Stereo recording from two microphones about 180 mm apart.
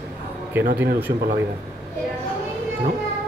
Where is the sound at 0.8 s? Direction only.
10° right (ahead or behind).